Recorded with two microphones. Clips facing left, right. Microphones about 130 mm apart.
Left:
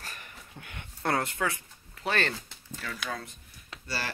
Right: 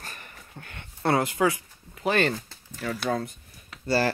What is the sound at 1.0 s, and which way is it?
Speech, 10° right (ahead or behind).